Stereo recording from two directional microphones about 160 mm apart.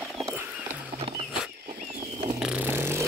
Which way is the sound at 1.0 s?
35° right (ahead or behind).